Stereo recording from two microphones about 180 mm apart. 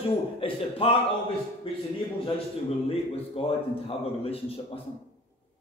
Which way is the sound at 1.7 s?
30° left (ahead or behind).